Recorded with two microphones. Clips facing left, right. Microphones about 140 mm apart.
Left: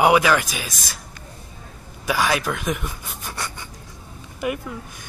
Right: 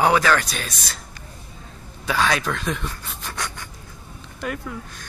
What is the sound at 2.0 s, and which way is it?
Speech, 10° left (ahead or behind).